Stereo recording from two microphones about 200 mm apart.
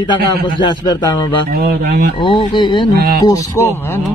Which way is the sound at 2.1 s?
25° left (ahead or behind).